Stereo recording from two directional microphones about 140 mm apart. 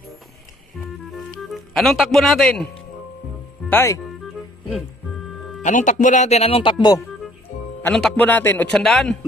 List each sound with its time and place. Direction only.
1.1 s music: centre (ahead or behind)
3.6 s speech: 15° left (ahead or behind)
5.6 s speech: 65° left (ahead or behind); by 7.1 s 30° left (ahead or behind)
7.9 s a man's voice: 5° left (ahead or behind)